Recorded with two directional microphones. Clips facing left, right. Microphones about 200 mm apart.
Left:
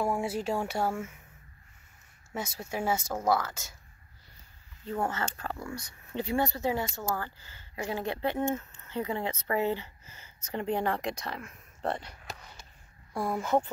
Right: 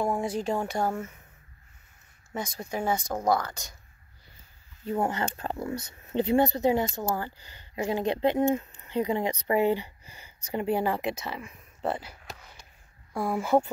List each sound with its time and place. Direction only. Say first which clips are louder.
0.2 s speech: right 2 dB; 5° left (ahead or behind)
2.3 s speech: right 2 dB; 5° left (ahead or behind)
4.8 s speech: right 4 dB; 15° right (ahead or behind)